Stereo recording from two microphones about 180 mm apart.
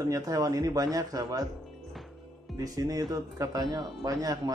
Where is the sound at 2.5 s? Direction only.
20° right (ahead or behind).